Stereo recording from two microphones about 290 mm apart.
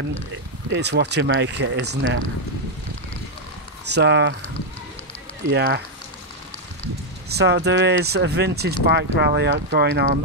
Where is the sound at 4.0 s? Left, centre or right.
Right.